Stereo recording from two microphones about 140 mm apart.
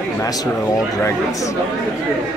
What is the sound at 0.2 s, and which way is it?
Speech, 25° left (ahead or behind).